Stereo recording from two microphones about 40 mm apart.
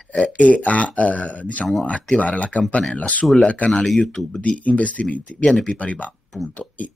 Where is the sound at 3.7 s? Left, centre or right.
Centre.